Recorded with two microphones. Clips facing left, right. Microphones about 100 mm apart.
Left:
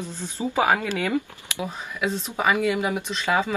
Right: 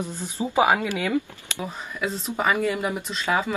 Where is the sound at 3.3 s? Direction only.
15° right (ahead or behind).